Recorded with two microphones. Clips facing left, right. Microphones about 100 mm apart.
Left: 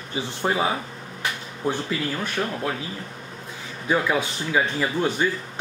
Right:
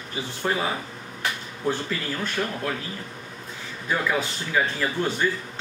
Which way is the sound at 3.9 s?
15° left (ahead or behind).